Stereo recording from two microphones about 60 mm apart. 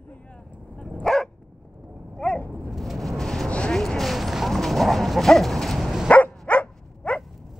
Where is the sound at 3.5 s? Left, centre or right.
Centre.